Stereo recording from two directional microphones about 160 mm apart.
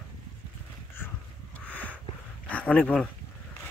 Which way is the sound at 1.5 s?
10° left (ahead or behind).